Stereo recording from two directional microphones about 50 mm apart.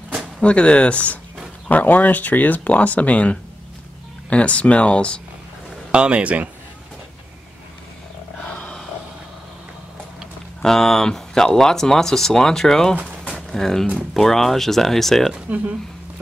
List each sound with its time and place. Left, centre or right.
0.4 s speech: left
5.9 s speech: right
8.4 s a sound: centre
10.6 s speech: centre
13.3 s a sound: centre
13.9 s speech: centre